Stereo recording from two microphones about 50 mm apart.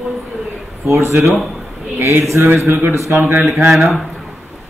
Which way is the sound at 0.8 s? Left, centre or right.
Right.